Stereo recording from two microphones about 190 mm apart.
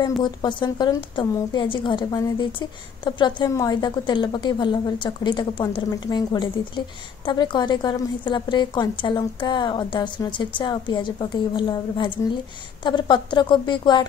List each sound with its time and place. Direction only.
0.2 s a woman's voice: 25° left (ahead or behind)